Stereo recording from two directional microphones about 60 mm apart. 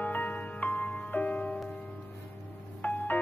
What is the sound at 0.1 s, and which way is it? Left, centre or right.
Music, left.